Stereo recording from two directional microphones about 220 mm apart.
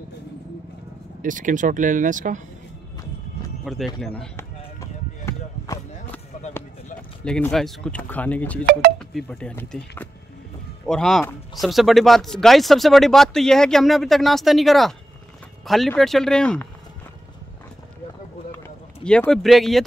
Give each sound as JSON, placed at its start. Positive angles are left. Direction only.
{"t": 1.2, "sound": "speech", "side_deg": -35}
{"t": 3.6, "sound": "chop", "side_deg": 0}
{"t": 7.2, "sound": "speech", "side_deg": 5}
{"t": 19.0, "sound": "speech", "side_deg": 5}